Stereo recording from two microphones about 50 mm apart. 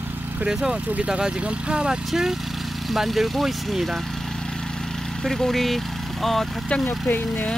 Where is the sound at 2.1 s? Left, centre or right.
Centre.